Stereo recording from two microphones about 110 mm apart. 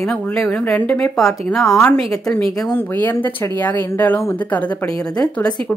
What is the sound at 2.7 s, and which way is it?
Speech, 15° left (ahead or behind).